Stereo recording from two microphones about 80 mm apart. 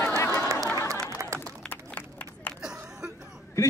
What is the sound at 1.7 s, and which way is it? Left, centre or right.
Run, left.